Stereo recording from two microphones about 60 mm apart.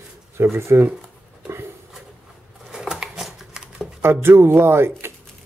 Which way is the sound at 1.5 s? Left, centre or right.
Right.